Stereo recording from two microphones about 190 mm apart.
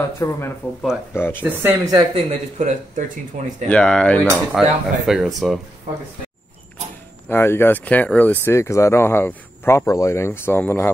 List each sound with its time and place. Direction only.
0.2 s speech: 15° left (ahead or behind)
1.4 s speech: 10° right (ahead or behind)
2.1 s speech: 40° right (ahead or behind)
3.6 s speech: 5° left (ahead or behind)
7.2 s speech: 10° left (ahead or behind)